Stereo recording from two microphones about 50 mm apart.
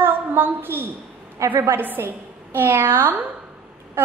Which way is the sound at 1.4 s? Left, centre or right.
Right.